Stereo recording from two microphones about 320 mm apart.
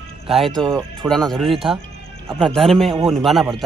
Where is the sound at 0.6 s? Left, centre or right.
Centre.